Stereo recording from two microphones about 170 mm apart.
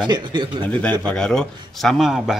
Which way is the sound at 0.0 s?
30° right (ahead or behind).